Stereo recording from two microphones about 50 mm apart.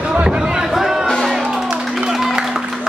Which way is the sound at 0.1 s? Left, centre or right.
Centre.